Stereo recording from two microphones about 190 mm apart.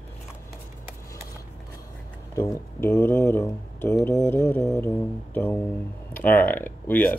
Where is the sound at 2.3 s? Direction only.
15° left (ahead or behind).